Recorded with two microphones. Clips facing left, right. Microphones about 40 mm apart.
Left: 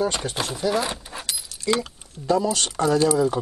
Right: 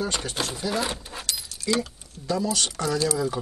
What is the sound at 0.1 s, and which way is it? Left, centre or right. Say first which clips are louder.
Speech: left 2 dB; centre.